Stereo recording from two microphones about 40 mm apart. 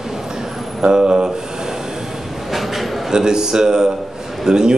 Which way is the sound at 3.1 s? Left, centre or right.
Centre.